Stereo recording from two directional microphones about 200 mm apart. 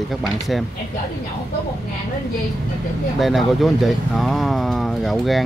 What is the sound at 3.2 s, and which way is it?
Speech, centre (ahead or behind).